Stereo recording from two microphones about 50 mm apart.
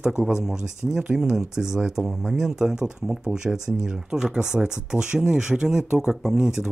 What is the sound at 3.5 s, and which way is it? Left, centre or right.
Speech, left.